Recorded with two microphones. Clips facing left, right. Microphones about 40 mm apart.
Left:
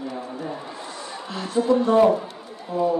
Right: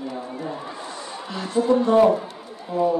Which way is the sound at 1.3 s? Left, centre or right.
Centre.